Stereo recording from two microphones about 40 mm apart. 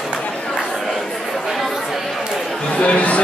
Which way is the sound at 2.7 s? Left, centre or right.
Left.